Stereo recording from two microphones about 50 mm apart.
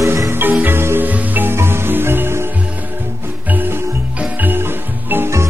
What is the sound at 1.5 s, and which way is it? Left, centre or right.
Music, right.